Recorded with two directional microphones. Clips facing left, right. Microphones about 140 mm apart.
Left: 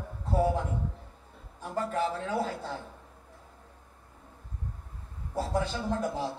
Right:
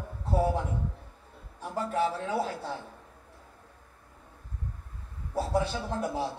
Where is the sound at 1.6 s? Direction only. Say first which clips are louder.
Right 1 dB; 5° right (ahead or behind).